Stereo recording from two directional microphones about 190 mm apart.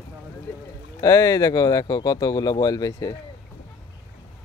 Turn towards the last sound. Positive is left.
turn(degrees=20)  # may be behind; listen again after turning